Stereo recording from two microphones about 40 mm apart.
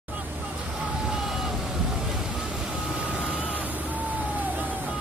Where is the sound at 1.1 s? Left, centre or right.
Centre.